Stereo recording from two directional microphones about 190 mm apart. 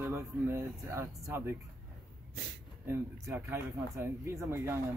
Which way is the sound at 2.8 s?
15° right (ahead or behind).